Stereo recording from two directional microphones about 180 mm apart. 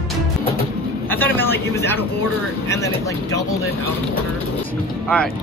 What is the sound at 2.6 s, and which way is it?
Speech, 15° left (ahead or behind).